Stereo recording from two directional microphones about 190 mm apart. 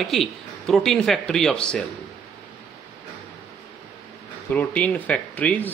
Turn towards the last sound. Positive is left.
turn(degrees=10)  # may be behind; listen again after turning